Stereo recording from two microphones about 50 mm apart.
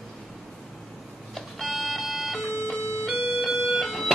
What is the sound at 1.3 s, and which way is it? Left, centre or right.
Music, centre.